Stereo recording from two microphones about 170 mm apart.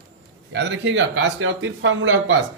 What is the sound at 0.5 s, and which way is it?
Speech, 90° right.